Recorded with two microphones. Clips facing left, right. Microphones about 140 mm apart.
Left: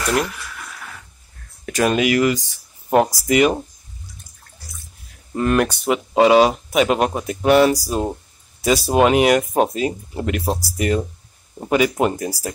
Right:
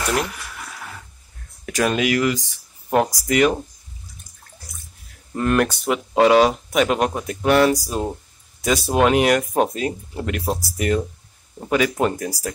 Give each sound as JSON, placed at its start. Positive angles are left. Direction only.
{"t": 1.7, "sound": "speech", "side_deg": 5}
{"t": 5.3, "sound": "speech", "side_deg": 5}
{"t": 11.6, "sound": "speech", "side_deg": 15}